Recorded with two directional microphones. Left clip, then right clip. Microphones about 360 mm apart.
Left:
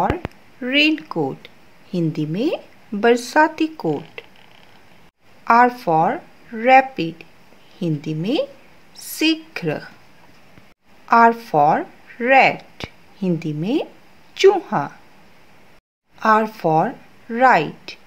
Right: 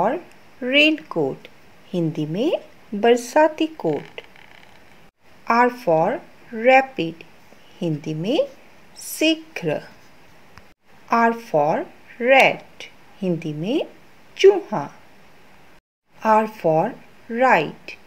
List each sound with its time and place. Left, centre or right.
0.6 s speech: centre
5.4 s speech: centre
11.1 s speech: centre
12.7 s a sound: centre
14.3 s speech: centre
16.2 s speech: centre